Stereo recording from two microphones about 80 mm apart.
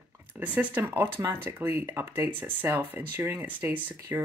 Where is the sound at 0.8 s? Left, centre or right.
Right.